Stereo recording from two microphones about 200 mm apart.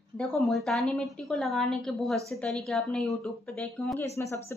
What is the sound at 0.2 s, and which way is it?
A woman's voice, 5° left (ahead or behind).